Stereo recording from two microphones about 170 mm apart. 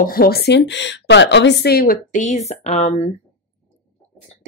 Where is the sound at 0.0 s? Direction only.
60° left (ahead or behind); by 3.1 s 40° left (ahead or behind).